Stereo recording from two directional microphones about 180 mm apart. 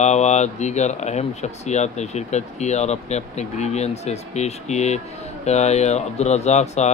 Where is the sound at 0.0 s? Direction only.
40° left (ahead or behind).